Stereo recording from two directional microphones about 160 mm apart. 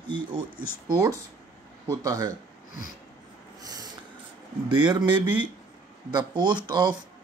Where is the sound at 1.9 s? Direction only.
20° right (ahead or behind).